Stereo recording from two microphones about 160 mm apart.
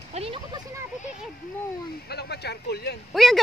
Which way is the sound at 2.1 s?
90° left.